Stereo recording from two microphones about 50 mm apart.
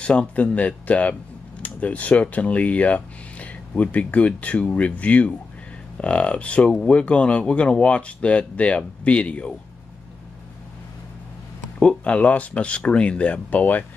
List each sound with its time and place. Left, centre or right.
0.0 s speech: left
11.8 s speech: left